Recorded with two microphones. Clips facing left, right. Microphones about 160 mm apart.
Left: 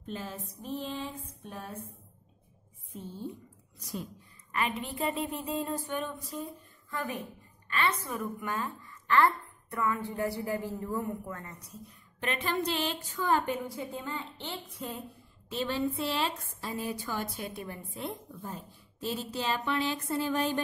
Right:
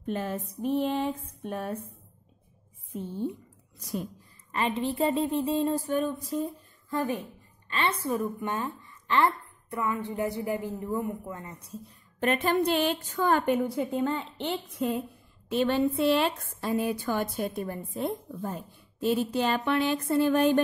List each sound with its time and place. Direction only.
0.0 s a woman's voice: 60° right (ahead or behind)
4.5 s a woman's voice: 30° right (ahead or behind)
12.2 s a woman's voice: 50° right (ahead or behind)
18.4 s a woman's voice: 60° right (ahead or behind)